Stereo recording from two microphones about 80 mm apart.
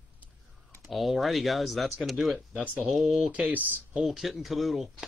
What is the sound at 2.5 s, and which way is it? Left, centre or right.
Speech, centre.